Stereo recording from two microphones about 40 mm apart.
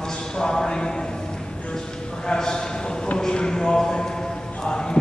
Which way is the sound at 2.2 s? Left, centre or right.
Centre.